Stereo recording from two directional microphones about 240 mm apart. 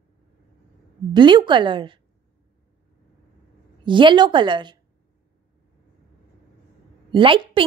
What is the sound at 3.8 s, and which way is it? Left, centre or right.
Speech, centre.